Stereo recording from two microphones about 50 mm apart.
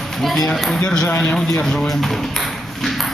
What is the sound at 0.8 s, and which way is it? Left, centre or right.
Ping, centre.